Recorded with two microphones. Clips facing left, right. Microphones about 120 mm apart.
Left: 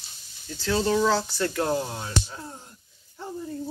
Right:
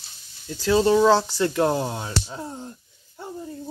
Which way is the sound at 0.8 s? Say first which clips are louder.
Right 5 dB; 25° right (ahead or behind).